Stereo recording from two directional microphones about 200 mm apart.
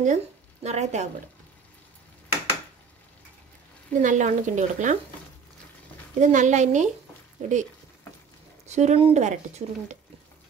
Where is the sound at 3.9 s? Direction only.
40° right (ahead or behind).